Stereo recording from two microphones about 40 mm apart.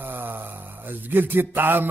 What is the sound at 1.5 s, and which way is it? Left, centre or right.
Music, right.